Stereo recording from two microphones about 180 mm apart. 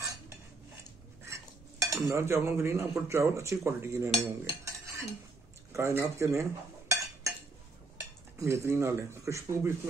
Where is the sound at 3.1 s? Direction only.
15° right (ahead or behind).